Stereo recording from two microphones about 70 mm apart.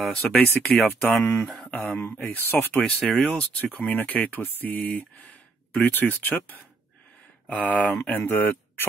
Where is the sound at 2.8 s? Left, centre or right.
Centre.